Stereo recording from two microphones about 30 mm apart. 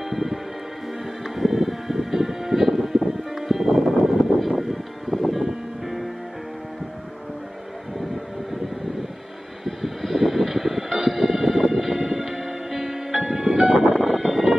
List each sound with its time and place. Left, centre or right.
0.1 s music: centre
5.4 s music: centre
9.7 s vehicle: centre
13.4 s music: centre
13.9 s music: centre